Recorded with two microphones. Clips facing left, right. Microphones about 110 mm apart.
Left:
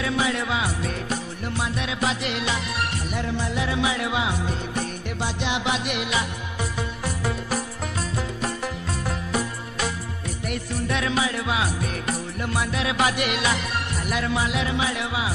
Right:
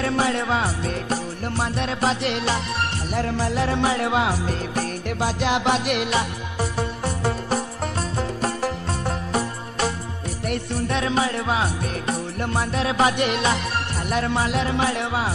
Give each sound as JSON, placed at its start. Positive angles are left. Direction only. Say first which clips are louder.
{"t": 0.0, "sound": "music", "louder": "right 3 dB", "side_deg": -40}
{"t": 6.0, "sound": "music", "louder": "right 3 dB", "side_deg": -30}